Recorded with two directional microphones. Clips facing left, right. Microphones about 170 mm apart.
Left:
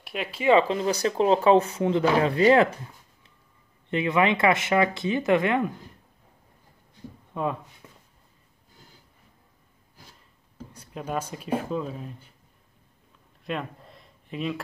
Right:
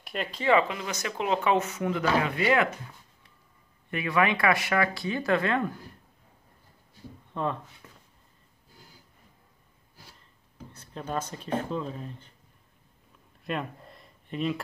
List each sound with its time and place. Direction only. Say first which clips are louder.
0.0 s speech: left 2 dB; 5° left (ahead or behind)
0.5 s speech: left 5 dB; 30° left (ahead or behind)
3.9 s speech: left 3 dB; 20° left (ahead or behind)
7.3 s speech: left 2 dB; 10° left (ahead or behind)
7.8 s a sound: left 2 dB; 15° left (ahead or behind)
10.7 s speech: left 2 dB; 10° left (ahead or behind)
13.4 s a sound: left 1 dB; centre (ahead or behind)